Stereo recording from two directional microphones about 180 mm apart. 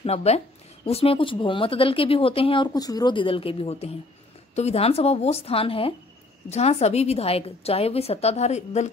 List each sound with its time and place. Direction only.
0.0 s a woman's voice: 35° left (ahead or behind)